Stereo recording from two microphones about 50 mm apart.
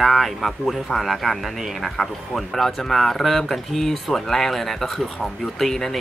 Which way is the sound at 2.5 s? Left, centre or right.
Centre.